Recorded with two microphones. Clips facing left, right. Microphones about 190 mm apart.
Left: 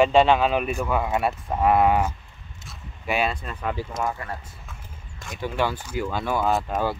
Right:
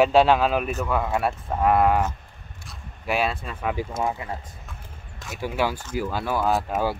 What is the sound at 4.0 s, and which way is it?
Speech, 20° right (ahead or behind).